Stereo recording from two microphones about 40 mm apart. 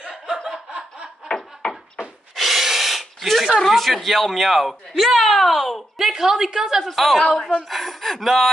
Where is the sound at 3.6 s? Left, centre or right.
Centre.